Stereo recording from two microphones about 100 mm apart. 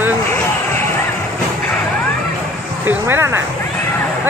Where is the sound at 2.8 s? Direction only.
20° right (ahead or behind).